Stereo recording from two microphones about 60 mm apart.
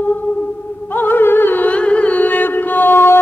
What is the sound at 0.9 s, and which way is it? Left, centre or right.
Music, left.